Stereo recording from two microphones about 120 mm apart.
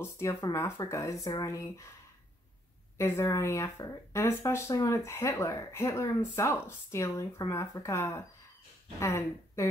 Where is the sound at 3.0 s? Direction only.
25° left (ahead or behind).